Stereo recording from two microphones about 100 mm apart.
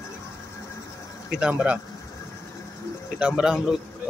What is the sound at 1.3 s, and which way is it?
Speech, 10° right (ahead or behind).